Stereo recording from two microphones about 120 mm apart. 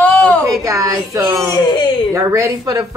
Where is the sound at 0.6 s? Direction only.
25° right (ahead or behind).